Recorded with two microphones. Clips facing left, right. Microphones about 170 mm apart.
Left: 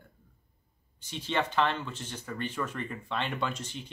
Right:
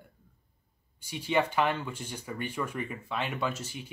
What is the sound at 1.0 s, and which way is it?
Speech, 10° right (ahead or behind).